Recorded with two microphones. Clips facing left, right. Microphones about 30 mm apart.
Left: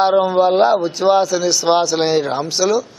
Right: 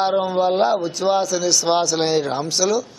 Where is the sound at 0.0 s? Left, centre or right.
Centre.